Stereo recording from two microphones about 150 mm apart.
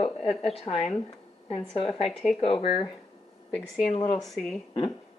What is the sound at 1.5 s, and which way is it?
A woman's voice, 40° left (ahead or behind).